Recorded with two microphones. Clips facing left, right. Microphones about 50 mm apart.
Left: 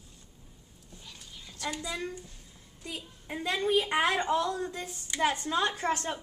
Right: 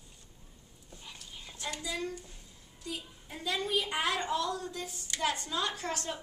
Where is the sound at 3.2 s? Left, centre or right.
Left.